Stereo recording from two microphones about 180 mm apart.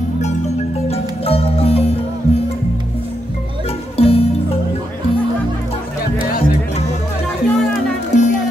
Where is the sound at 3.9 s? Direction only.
30° left (ahead or behind).